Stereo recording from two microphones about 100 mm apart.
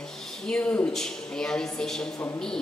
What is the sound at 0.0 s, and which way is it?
A woman's voice, 5° left (ahead or behind).